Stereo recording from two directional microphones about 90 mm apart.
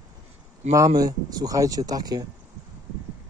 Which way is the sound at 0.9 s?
45° right (ahead or behind).